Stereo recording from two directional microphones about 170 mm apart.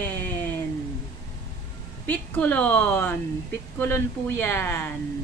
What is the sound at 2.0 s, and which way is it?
Speech, 10° left (ahead or behind).